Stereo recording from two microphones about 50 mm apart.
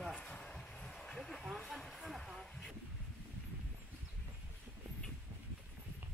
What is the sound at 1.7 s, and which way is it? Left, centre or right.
Speech, centre.